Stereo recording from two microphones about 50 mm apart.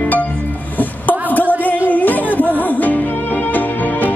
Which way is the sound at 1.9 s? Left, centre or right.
Left.